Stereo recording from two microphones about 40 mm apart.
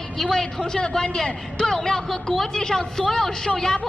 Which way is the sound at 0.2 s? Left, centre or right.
Centre.